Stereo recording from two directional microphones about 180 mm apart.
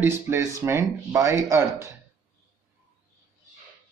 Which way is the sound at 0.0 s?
15° right (ahead or behind).